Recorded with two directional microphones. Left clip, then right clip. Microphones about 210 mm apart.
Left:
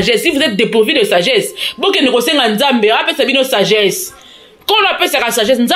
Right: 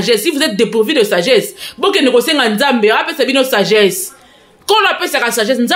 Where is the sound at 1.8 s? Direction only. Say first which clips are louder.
Right 1 dB; centre (ahead or behind).